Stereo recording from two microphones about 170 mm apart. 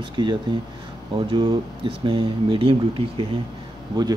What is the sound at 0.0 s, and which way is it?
Speech, 30° right (ahead or behind).